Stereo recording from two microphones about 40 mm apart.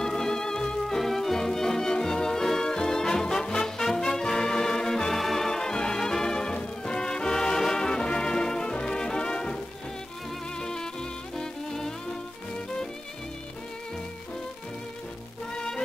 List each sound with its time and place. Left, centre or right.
0.0 s music: centre
10.6 s music: centre
15.5 s music: left